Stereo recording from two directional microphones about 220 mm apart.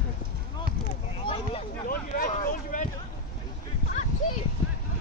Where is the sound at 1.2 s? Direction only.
25° left (ahead or behind).